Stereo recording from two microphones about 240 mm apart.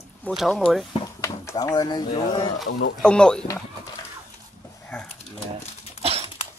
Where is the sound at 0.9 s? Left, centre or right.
Centre.